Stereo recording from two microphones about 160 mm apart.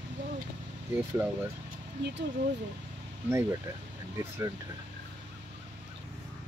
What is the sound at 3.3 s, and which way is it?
Speech, 15° right (ahead or behind).